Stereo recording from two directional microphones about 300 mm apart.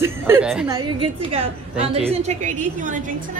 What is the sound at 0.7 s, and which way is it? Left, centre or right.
A woman's voice, centre.